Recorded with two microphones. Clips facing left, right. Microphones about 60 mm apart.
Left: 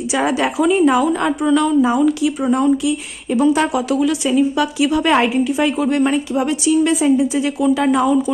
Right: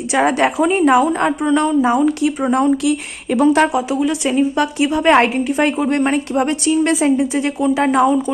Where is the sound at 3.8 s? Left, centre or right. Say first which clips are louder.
Left 1 dB; centre.